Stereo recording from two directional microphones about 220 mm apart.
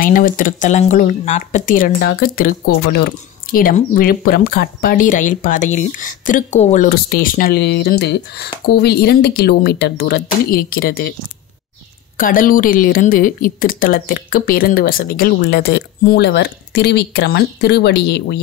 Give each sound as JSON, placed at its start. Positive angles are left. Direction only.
{"t": 0.0, "sound": "a woman's voice", "side_deg": 40}
{"t": 12.2, "sound": "a woman's voice", "side_deg": 40}